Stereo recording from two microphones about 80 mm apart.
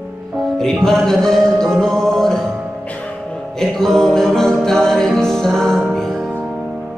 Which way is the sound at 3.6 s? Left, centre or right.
Centre.